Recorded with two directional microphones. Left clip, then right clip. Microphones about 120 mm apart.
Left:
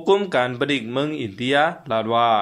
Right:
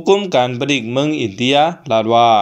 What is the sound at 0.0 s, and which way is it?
Speech, 15° right (ahead or behind).